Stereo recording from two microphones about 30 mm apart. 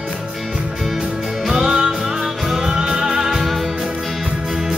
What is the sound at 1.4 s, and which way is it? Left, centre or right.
Music, centre.